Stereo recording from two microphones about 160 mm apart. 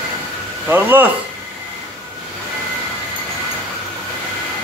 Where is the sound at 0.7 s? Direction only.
10° right (ahead or behind).